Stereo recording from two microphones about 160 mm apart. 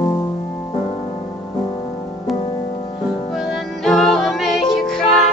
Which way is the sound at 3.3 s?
Centre (ahead or behind).